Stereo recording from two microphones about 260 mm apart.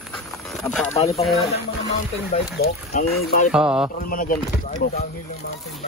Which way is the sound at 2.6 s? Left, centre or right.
Left.